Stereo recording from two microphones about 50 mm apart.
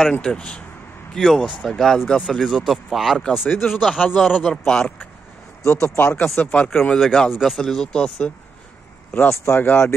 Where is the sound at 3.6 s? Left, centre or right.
Left.